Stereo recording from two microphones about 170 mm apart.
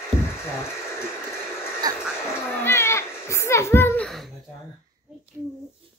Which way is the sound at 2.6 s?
15° left (ahead or behind).